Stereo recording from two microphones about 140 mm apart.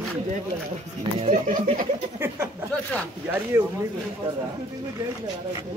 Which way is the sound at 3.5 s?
20° right (ahead or behind).